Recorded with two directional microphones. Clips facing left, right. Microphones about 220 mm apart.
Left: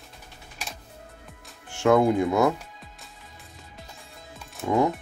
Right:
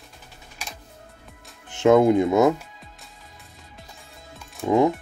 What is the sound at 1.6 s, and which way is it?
Speech, 20° right (ahead or behind).